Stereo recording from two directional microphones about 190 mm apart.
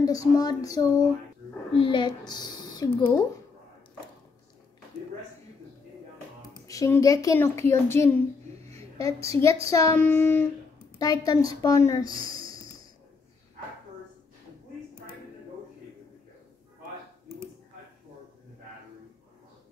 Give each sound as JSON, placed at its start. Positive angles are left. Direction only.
{"t": 0.0, "sound": "speech", "side_deg": 20}
{"t": 6.5, "sound": "speech", "side_deg": 15}
{"t": 12.4, "sound": "a sound", "side_deg": 20}